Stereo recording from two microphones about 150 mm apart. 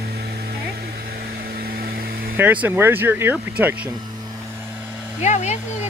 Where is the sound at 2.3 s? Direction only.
10° right (ahead or behind).